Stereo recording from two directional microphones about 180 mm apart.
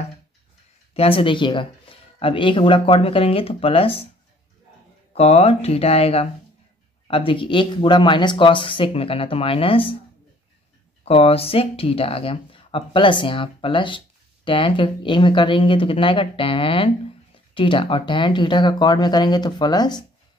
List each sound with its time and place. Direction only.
0.9 s speech: 30° left (ahead or behind)
5.1 s speech: 35° left (ahead or behind)
11.1 s speech: 35° left (ahead or behind)